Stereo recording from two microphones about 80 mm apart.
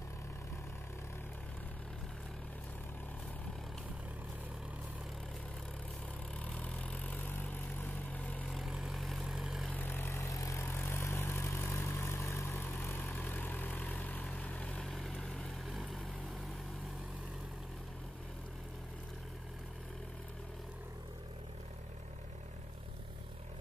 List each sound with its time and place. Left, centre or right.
6.4 s vehicle: centre
8.5 s vehicle: centre
9.7 s vehicle: left
14.8 s vehicle: centre